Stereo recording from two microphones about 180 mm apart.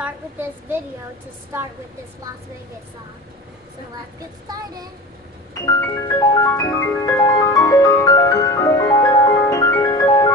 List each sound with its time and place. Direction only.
0.0 s a woman's voice: 10° right (ahead or behind)
5.5 s music: 20° left (ahead or behind)